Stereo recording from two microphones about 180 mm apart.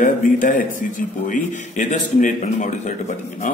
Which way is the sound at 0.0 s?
45° left (ahead or behind).